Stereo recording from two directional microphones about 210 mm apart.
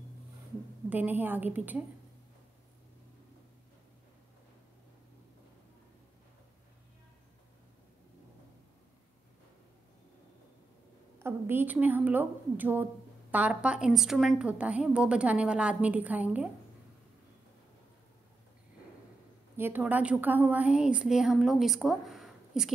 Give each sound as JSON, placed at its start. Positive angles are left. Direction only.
{"t": 0.8, "sound": "a woman's voice", "side_deg": -10}
{"t": 11.1, "sound": "a woman's voice", "side_deg": -10}
{"t": 19.5, "sound": "a woman's voice", "side_deg": -10}